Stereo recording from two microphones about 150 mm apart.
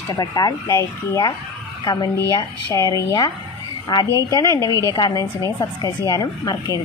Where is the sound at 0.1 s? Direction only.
25° left (ahead or behind).